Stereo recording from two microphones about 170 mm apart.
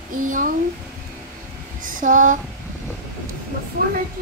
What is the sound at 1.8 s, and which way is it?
Speech, 50° right (ahead or behind).